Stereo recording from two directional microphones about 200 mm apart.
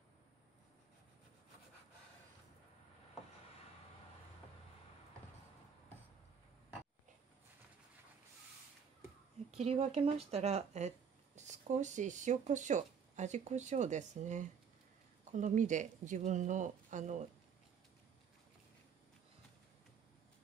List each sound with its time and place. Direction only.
9.5 s speech: 30° right (ahead or behind)